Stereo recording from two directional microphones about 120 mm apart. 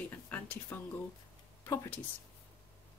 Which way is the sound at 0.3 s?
15° left (ahead or behind).